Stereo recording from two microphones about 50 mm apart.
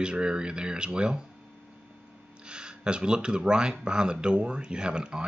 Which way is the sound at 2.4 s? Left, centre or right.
Centre.